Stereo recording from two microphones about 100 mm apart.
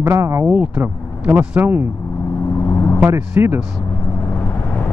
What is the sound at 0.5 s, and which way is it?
Speech, 15° right (ahead or behind).